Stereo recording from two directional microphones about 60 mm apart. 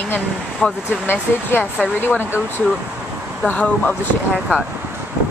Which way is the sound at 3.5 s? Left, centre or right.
Left.